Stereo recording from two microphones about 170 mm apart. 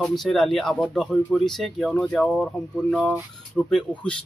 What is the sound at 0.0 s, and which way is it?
Speech, centre (ahead or behind).